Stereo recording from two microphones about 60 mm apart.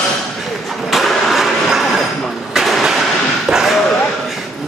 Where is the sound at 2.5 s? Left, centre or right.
Centre.